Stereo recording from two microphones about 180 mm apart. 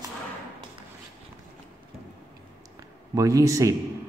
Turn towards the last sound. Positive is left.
turn(degrees=-15)  # may be behind; listen again after turning